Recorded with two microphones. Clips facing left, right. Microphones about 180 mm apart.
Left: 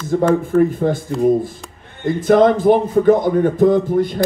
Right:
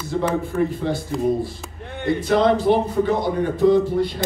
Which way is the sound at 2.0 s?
50° left (ahead or behind).